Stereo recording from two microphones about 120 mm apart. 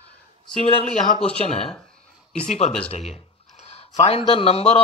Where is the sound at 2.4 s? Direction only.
70° left (ahead or behind).